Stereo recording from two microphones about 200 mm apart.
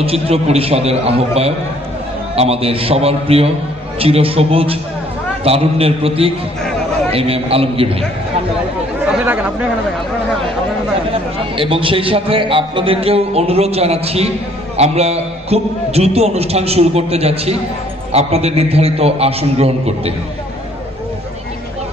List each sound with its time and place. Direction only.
0.0 s a man's voice: 30° right (ahead or behind)
9.2 s speech: 10° right (ahead or behind)
11.3 s a man's voice: 25° right (ahead or behind)